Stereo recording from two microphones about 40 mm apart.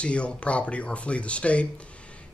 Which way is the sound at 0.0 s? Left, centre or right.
Left.